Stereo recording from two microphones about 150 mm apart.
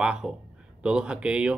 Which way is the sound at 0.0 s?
5° right (ahead or behind).